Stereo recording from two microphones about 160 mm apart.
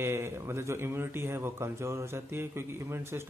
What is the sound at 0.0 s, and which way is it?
A man's voice, 15° right (ahead or behind).